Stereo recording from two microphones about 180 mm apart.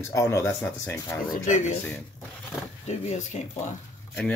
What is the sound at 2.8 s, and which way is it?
Speech, 40° left (ahead or behind).